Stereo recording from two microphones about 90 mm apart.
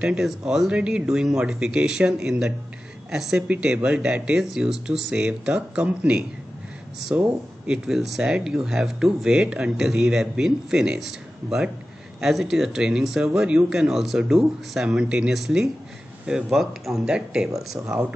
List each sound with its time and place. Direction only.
0.0 s speech: 5° right (ahead or behind)
17.8 s speech: 25° right (ahead or behind)